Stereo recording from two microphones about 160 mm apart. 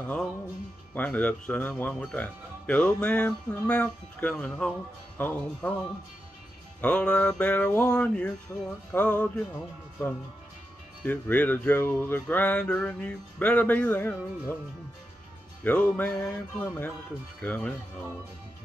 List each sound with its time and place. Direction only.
0.0 s speech: 10° left (ahead or behind)
6.8 s speech: 5° left (ahead or behind)
11.1 s speech: 10° left (ahead or behind)
15.6 s speech: 10° left (ahead or behind)